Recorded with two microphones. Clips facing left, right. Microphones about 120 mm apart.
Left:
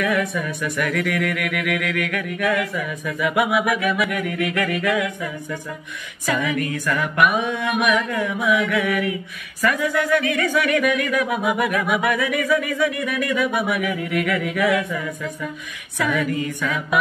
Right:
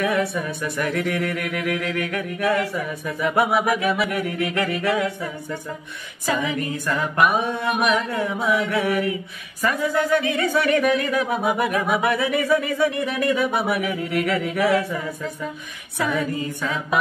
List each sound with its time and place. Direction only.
0.0 s speech: 30° right (ahead or behind)
16.0 s a capella: 30° right (ahead or behind)